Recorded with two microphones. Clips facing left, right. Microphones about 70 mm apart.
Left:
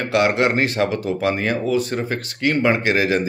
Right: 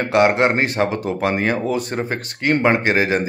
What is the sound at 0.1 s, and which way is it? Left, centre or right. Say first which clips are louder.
Speech: right 2 dB; right.